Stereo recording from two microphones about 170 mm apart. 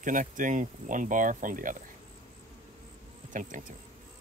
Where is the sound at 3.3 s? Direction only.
50° right (ahead or behind).